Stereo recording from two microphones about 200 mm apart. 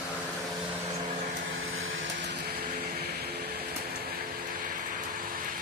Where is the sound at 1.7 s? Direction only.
85° right.